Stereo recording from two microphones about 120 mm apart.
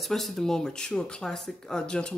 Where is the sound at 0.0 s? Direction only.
Centre (ahead or behind).